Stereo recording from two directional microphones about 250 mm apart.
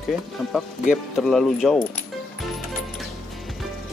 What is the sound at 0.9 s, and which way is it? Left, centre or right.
Speech, centre.